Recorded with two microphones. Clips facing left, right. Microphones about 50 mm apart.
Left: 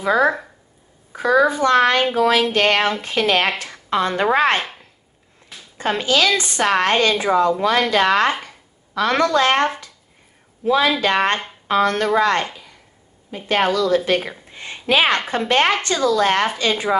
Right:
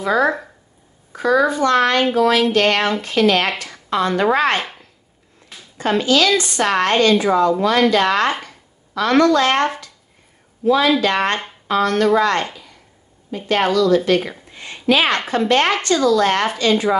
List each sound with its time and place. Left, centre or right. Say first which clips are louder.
0.0 s a woman's voice: even; centre
5.8 s a woman's voice: right 2 dB; left
13.5 s a woman's voice: right 2 dB; centre